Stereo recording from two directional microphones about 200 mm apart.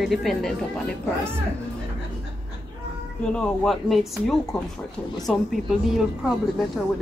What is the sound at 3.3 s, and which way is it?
A woman's voice, centre (ahead or behind).